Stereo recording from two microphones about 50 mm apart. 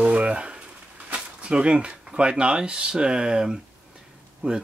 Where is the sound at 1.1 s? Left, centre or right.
Centre.